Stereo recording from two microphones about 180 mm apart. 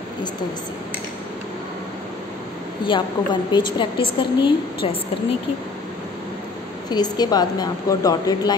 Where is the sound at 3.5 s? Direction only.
25° left (ahead or behind).